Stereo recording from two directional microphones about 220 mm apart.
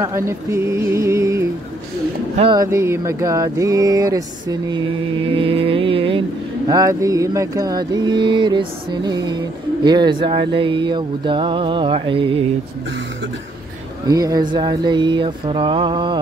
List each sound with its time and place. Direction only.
0.0 s mantra: 10° right (ahead or behind)
5.3 s speech: 25° right (ahead or behind)
6.7 s mantra: 15° right (ahead or behind)
9.8 s speech: 20° right (ahead or behind)
14.0 s speech: 15° right (ahead or behind)